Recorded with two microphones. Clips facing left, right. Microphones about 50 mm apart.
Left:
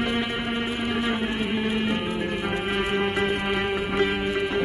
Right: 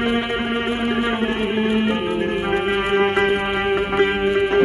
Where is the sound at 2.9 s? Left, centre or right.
Right.